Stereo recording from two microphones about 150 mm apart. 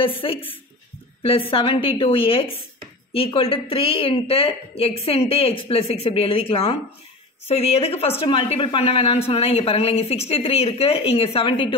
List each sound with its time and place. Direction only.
0.0 s a woman's voice: 35° left (ahead or behind)